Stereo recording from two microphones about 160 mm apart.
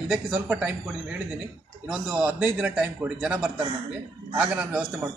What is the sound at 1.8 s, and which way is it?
A man's voice, 5° right (ahead or behind).